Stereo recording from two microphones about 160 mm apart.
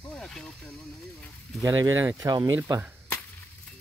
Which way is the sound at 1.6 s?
20° right (ahead or behind).